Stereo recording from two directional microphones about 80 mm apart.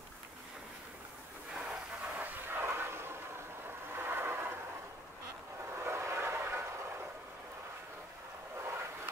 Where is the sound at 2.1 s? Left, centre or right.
Right.